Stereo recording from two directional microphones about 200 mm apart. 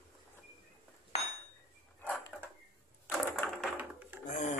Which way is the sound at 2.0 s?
5° left (ahead or behind).